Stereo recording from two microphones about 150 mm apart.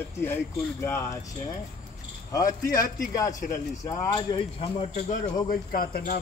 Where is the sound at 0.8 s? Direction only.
20° left (ahead or behind).